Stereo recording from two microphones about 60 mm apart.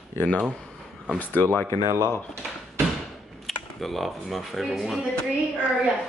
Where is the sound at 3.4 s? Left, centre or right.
Centre.